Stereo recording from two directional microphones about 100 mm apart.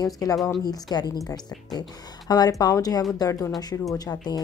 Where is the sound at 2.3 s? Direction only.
40° left (ahead or behind).